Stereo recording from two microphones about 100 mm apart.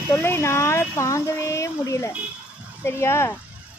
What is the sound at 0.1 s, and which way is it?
Speech, 25° left (ahead or behind).